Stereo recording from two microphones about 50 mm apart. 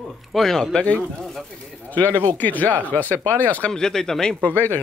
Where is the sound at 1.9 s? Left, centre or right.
Left.